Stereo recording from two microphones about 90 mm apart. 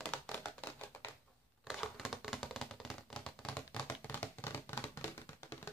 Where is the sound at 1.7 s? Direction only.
Centre (ahead or behind); by 5.7 s 30° left (ahead or behind).